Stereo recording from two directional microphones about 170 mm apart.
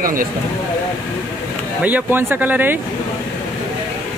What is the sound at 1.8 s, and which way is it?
Speech, 10° right (ahead or behind).